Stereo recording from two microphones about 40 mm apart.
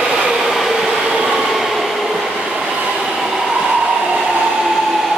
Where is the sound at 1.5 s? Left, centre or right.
Centre.